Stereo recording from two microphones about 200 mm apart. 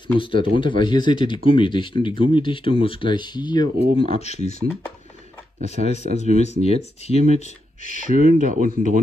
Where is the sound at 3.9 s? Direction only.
30° left (ahead or behind).